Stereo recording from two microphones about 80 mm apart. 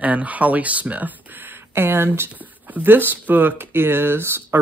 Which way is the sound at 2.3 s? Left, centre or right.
Centre.